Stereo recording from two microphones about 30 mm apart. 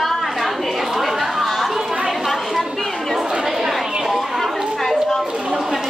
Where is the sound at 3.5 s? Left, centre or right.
Centre.